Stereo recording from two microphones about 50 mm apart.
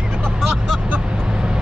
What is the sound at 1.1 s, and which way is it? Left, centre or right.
Vehicle, centre.